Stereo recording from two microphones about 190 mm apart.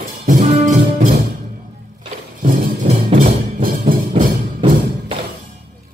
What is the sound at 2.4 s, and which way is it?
Music, 45° right (ahead or behind).